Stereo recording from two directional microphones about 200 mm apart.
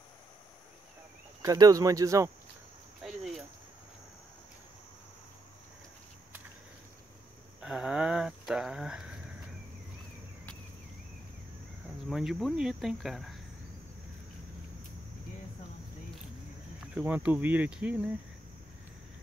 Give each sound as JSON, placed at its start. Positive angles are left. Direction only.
{"t": 1.4, "sound": "cricket", "side_deg": -15}
{"t": 3.0, "sound": "cricket", "side_deg": 0}
{"t": 7.6, "sound": "speech", "side_deg": -5}
{"t": 12.1, "sound": "cricket", "side_deg": 0}
{"t": 16.9, "sound": "cricket", "side_deg": -10}